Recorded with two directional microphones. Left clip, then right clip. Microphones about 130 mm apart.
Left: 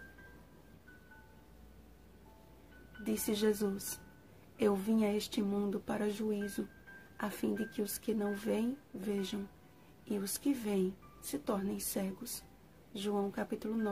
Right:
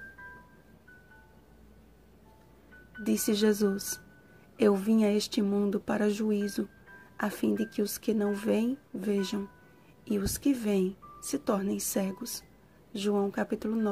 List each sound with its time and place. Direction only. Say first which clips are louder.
3.0 s speech: right 7 dB; 45° right (ahead or behind)